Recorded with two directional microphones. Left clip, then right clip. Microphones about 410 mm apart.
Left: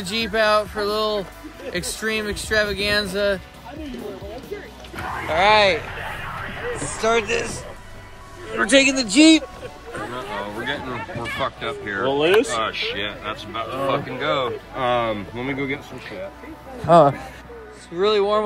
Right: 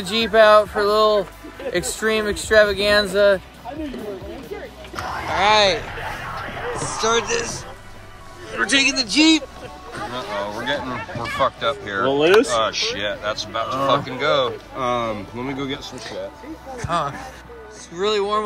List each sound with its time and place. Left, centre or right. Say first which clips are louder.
0.0 s speech: right 6 dB; centre
5.0 s a sound: even; centre
5.3 s speech: even; centre
5.8 s a sound: right 1 dB; centre
7.0 s speech: even; centre
10.1 s speech: right 4 dB; centre
14.8 s speech: left 1 dB; centre
16.9 s speech: left 10 dB; centre